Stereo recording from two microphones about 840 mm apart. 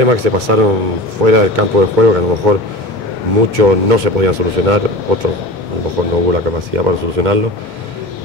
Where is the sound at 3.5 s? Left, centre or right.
Right.